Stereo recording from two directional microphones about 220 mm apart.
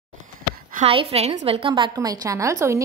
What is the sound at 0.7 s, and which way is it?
A woman's voice, 25° right (ahead or behind).